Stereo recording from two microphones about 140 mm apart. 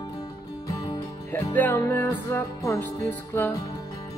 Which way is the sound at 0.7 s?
25° left (ahead or behind).